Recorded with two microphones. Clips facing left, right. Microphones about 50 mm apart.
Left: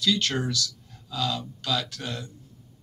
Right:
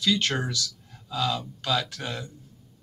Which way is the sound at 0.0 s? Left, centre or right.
Right.